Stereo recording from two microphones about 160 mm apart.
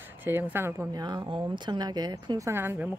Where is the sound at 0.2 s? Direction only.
15° right (ahead or behind).